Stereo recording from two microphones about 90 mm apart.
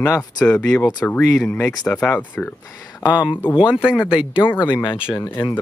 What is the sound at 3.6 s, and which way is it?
Speech, 10° right (ahead or behind).